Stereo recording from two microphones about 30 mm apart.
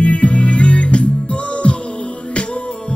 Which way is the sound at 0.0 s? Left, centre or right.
Left.